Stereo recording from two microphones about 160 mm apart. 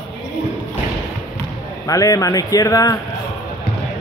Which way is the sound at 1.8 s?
20° left (ahead or behind).